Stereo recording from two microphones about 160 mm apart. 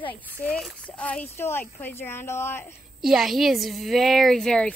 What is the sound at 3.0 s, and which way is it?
Speech, centre (ahead or behind).